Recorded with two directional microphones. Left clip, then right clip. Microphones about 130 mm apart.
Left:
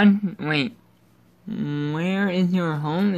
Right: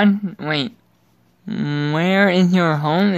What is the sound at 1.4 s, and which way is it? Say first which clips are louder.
Speech: right 5 dB; 55° right (ahead or behind).